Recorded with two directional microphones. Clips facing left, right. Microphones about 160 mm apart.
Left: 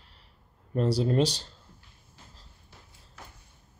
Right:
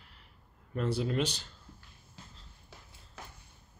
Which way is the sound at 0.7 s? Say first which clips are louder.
Left 6 dB; 35° left (ahead or behind).